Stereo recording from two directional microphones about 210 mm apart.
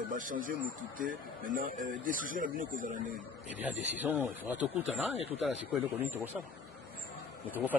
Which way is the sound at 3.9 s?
10° right (ahead or behind).